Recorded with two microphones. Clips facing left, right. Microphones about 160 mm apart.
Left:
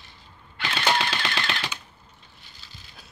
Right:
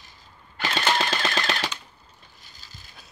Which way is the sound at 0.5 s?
45° right (ahead or behind).